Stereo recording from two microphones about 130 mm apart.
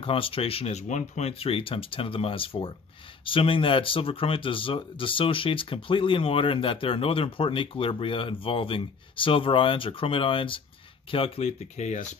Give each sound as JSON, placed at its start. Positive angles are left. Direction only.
{"t": 0.0, "sound": "speech", "side_deg": 45}
{"t": 0.8, "sound": "speech", "side_deg": 65}